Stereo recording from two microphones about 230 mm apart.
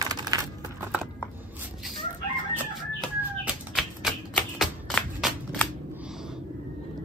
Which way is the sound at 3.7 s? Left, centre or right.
Centre.